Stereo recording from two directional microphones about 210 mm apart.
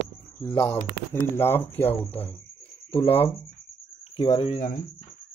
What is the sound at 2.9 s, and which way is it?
Speech, 25° left (ahead or behind).